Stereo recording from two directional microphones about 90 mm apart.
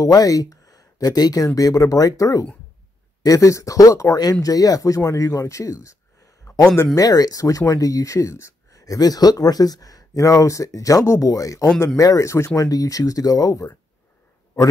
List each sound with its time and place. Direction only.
0.0 s speech: 45° left (ahead or behind)
6.5 s a sound: 40° left (ahead or behind)
7.0 s speech: 45° left (ahead or behind)